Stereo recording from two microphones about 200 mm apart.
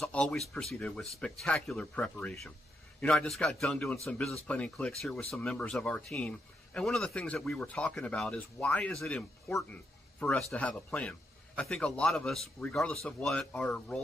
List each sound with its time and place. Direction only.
0.0 s a man's voice: 5° left (ahead or behind)